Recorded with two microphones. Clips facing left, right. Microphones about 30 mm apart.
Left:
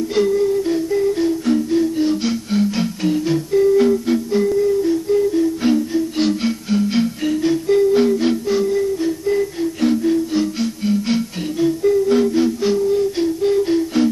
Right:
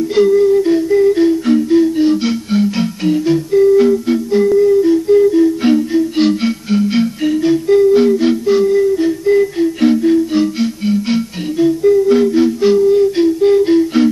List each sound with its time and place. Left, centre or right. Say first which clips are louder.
0.1 s music: right 7 dB; centre
8.9 s music: right 6 dB; right